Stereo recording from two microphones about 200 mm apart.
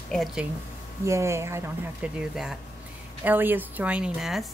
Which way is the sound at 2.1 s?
Centre (ahead or behind).